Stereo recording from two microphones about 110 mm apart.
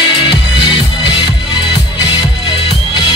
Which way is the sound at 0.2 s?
40° left (ahead or behind).